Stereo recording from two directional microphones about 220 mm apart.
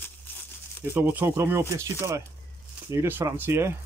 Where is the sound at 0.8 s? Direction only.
10° right (ahead or behind).